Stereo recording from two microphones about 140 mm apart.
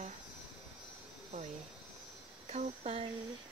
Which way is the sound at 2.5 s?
50° right (ahead or behind).